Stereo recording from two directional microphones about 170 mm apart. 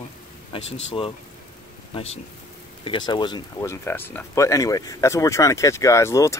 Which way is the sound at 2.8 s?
30° left (ahead or behind).